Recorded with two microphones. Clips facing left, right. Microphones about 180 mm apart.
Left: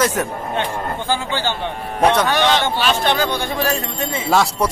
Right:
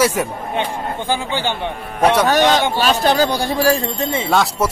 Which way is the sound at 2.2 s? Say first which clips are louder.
Right 3 dB; 45° right (ahead or behind).